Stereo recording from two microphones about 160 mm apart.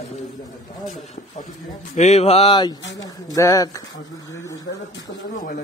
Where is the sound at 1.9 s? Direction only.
45° left (ahead or behind).